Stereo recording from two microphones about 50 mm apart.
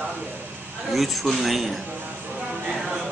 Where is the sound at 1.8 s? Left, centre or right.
Right.